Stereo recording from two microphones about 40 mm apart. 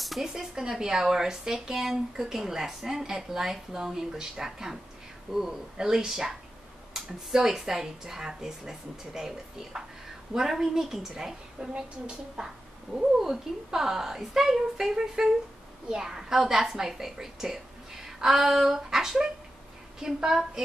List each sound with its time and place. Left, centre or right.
0.0 s a sound: centre
0.3 s speech: centre
11.7 s a woman's voice: right
12.9 s speech: centre